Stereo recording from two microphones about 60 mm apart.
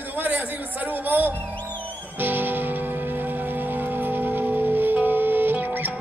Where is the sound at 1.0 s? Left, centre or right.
Right.